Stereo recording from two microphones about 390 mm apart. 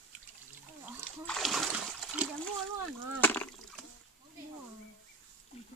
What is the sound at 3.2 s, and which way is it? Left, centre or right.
Rowboat, centre.